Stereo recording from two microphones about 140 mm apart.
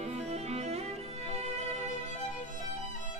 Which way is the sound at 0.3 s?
50° right (ahead or behind).